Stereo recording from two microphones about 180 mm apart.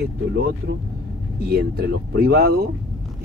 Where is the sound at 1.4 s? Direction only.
60° right (ahead or behind).